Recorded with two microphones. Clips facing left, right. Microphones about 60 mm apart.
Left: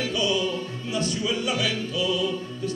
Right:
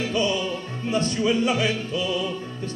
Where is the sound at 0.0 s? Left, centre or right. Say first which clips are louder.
Right 1 dB; right.